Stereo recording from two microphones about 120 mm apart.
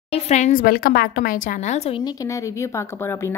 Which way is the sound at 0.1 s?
75° left (ahead or behind).